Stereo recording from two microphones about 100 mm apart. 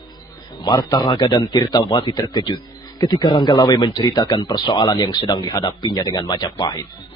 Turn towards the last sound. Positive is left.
turn(degrees=45)  # may be behind; listen again after turning